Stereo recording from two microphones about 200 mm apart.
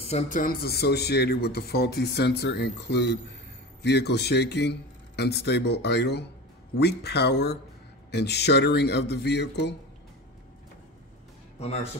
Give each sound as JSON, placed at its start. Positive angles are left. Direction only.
{"t": 0.0, "sound": "a man's voice", "side_deg": 35}
{"t": 11.6, "sound": "speech", "side_deg": 30}